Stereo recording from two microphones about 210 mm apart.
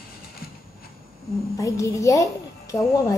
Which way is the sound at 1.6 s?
15° left (ahead or behind).